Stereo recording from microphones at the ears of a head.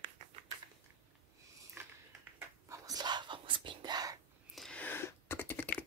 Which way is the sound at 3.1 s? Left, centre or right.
Right.